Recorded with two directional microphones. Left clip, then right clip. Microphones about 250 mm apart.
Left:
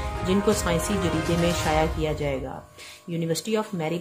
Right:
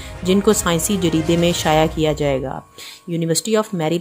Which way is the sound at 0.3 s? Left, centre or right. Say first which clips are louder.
Right 7 dB; right.